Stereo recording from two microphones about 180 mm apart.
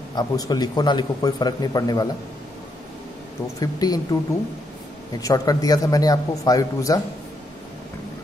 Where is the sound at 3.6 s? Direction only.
20° left (ahead or behind).